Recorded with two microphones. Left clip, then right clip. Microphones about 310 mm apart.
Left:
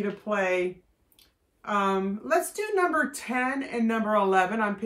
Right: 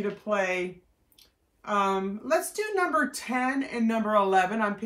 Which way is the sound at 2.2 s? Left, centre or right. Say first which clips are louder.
Even; centre.